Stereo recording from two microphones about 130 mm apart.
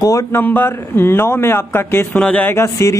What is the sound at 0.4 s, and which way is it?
Speech, 15° left (ahead or behind).